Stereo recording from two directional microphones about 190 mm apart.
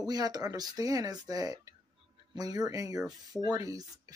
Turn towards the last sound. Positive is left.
turn(degrees=-20)  # may be behind; listen again after turning